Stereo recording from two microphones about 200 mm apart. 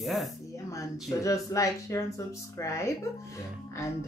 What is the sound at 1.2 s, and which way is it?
Speech, 15° left (ahead or behind).